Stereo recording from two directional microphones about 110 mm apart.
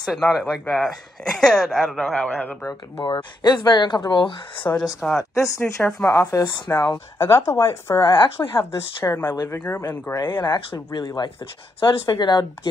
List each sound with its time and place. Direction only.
0.0 s speech: centre (ahead or behind)
3.0 s speech: 45° left (ahead or behind)
4.6 s speech: 5° left (ahead or behind)
5.3 s speech: 25° left (ahead or behind)
5.8 s speech: 10° left (ahead or behind)
6.0 s speech: 25° left (ahead or behind)
6.4 s speech: 40° left (ahead or behind)
9.5 s speech: 25° left (ahead or behind)
10.9 s speech: 40° left (ahead or behind)